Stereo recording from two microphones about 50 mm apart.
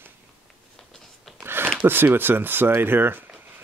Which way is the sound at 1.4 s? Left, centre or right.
Right.